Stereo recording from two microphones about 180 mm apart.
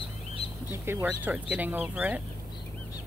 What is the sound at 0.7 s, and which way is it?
Speech, 10° right (ahead or behind).